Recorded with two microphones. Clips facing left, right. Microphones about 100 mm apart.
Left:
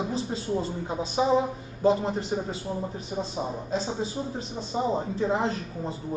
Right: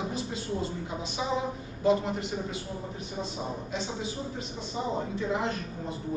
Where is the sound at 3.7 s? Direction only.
35° left (ahead or behind).